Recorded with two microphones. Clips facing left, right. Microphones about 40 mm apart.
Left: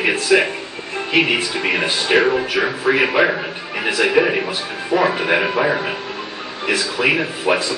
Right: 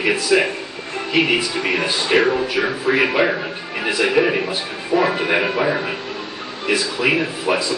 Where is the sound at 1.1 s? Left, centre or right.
Left.